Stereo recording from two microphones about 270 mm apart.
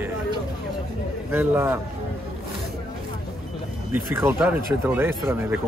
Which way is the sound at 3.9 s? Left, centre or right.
Centre.